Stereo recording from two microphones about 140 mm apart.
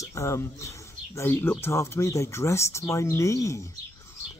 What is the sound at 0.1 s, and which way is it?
Speech, 20° left (ahead or behind).